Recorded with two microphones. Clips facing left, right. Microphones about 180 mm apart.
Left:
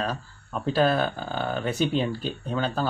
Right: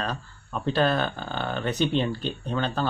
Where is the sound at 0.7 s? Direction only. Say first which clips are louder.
Left 1 dB; 5° left (ahead or behind).